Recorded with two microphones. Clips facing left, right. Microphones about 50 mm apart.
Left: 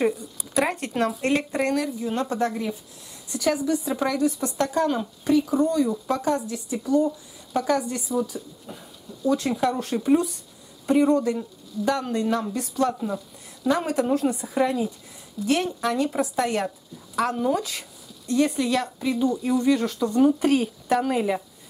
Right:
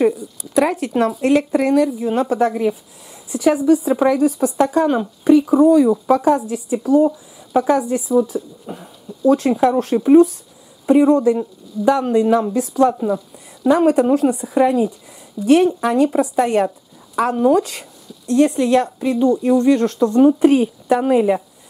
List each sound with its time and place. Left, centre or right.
0.0 s speech: centre
19.2 s speech: centre
20.2 s speech: centre